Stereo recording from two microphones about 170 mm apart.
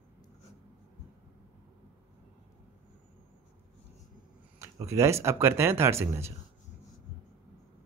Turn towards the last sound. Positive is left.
turn(degrees=-15)  # may be behind; listen again after turning